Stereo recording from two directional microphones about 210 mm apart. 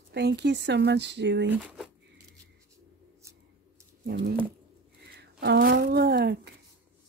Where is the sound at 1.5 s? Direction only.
5° right (ahead or behind).